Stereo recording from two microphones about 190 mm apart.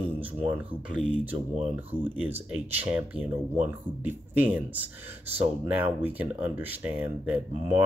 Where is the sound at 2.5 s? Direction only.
5° right (ahead or behind).